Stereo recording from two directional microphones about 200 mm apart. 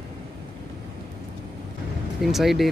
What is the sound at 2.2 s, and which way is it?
Speech, centre (ahead or behind).